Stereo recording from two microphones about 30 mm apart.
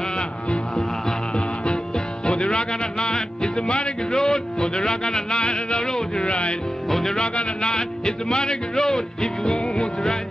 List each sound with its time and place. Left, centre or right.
2.2 s music: left
4.1 s music: centre
6.1 s music: left
6.9 s music: centre
7.3 s music: left